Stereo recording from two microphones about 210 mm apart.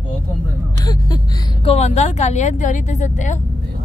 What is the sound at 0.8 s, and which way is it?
Speech, 20° left (ahead or behind).